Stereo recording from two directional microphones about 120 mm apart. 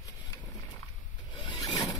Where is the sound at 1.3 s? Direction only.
35° left (ahead or behind).